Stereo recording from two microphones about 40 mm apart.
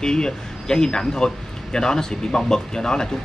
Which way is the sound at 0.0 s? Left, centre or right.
Centre.